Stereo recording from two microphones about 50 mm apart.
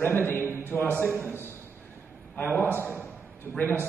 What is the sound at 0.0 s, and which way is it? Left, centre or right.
A man's voice, left.